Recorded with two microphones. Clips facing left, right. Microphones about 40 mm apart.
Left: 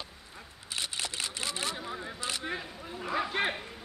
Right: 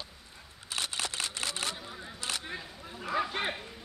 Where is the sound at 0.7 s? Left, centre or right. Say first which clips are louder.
Right 1 dB; right.